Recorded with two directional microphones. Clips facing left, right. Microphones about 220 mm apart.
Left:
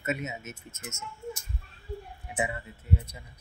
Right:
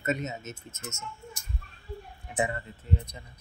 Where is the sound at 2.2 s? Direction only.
5° left (ahead or behind).